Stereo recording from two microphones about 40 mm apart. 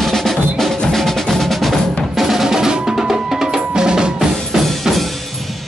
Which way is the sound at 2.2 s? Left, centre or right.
Centre.